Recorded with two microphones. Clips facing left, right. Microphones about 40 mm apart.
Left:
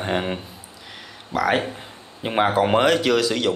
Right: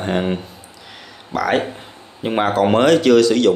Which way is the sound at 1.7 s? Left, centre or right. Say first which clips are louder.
Right 3 dB; centre.